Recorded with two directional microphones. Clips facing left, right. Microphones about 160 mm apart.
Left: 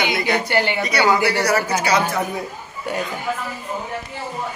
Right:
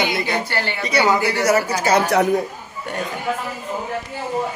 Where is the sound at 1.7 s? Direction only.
45° right (ahead or behind).